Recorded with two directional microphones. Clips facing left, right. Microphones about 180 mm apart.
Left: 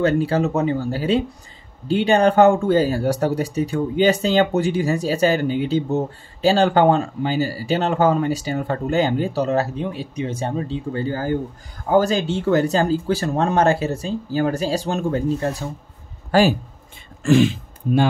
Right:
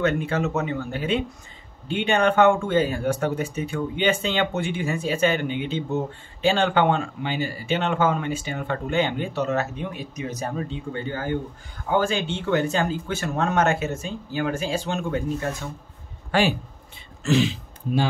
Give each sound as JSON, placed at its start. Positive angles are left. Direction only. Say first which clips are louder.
{"t": 0.0, "sound": "speech", "louder": "left 5 dB", "side_deg": 35}